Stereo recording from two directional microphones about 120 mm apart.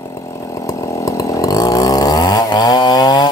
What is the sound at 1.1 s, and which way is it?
Chainsaw, 30° left (ahead or behind).